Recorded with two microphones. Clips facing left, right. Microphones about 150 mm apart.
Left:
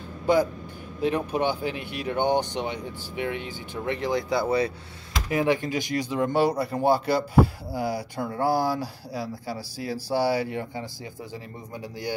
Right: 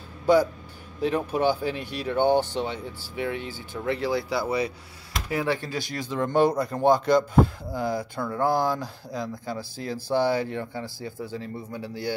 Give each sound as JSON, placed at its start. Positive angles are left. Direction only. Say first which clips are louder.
{"t": 1.0, "sound": "speech", "louder": "right 1 dB", "side_deg": 15}